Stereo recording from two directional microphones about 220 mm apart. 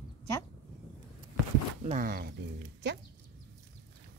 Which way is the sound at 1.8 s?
40° right (ahead or behind).